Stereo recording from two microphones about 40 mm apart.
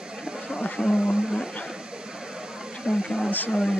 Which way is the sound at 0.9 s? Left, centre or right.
Centre.